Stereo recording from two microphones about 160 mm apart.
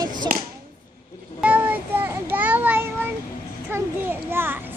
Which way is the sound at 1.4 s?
10° right (ahead or behind).